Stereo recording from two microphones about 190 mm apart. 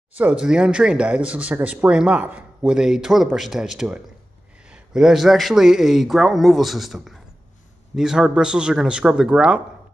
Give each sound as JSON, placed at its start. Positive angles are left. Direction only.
{"t": 0.1, "sound": "speech", "side_deg": -5}